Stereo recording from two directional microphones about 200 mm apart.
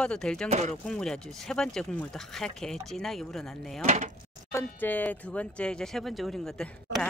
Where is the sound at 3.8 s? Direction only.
35° right (ahead or behind).